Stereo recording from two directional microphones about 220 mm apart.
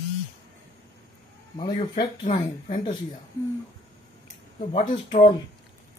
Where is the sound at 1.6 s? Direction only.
20° left (ahead or behind).